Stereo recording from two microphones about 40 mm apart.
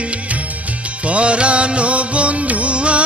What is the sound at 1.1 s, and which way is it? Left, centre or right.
Music, right.